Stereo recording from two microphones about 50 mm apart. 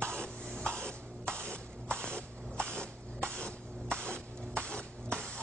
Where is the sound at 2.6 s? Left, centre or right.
Left.